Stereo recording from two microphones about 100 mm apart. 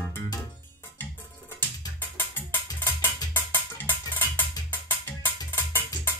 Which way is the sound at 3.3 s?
20° left (ahead or behind).